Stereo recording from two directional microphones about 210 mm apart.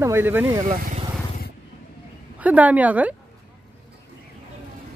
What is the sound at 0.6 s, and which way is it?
Speech, 35° right (ahead or behind).